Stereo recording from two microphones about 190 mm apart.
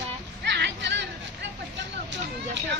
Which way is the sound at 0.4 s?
65° right (ahead or behind).